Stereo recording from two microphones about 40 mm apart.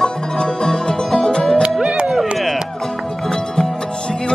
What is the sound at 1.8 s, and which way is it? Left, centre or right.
Music, centre.